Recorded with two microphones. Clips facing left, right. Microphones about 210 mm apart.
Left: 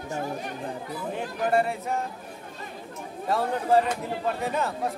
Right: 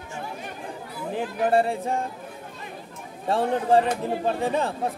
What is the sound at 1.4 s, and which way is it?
Yodeling, 30° right (ahead or behind).